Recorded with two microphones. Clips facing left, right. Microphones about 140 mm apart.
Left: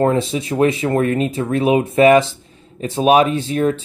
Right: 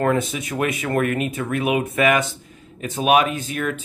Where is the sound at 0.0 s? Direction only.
25° left (ahead or behind).